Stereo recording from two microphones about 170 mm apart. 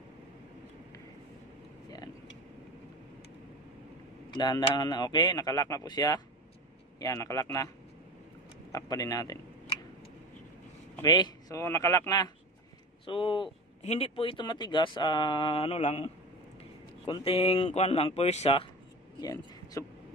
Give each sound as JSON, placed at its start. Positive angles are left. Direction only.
{"t": 4.3, "sound": "speech", "side_deg": 25}
{"t": 8.7, "sound": "speech", "side_deg": 20}
{"t": 11.0, "sound": "speech", "side_deg": 20}
{"t": 13.0, "sound": "speech", "side_deg": 30}
{"t": 19.1, "sound": "speech", "side_deg": 20}